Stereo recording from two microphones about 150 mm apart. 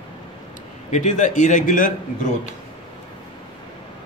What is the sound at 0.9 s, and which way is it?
A man's voice, 55° left (ahead or behind).